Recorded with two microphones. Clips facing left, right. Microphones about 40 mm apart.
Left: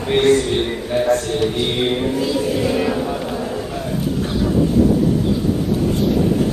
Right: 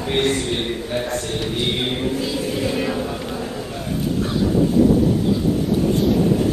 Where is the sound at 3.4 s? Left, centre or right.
Centre.